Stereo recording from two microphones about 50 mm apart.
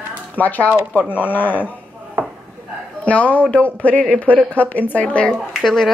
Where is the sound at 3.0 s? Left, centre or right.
Left.